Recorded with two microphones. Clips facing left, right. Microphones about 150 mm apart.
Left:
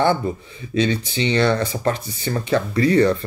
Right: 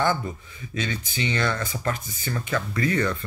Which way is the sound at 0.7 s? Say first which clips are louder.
Left 9 dB; 25° left (ahead or behind).